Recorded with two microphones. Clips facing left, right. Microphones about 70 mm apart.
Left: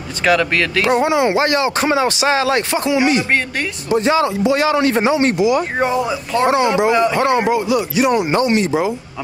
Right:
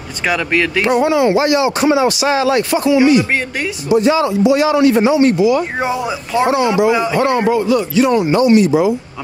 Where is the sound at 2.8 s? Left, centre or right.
Left.